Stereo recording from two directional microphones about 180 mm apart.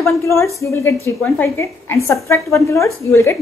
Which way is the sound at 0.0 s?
15° left (ahead or behind).